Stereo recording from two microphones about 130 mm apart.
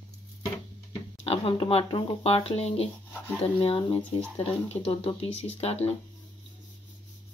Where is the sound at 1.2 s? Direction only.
45° left (ahead or behind).